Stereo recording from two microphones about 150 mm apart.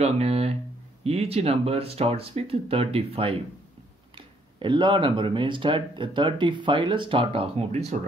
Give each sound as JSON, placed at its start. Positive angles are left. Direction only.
{"t": 0.0, "sound": "speech", "side_deg": -45}